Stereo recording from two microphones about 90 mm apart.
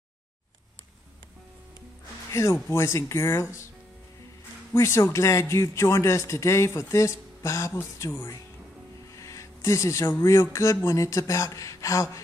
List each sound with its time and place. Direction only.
2.3 s speech: 30° left (ahead or behind)
4.7 s speech: 30° left (ahead or behind)